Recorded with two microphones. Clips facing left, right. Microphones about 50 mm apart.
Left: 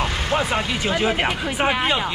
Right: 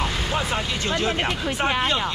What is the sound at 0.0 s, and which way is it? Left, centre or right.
Speech, left.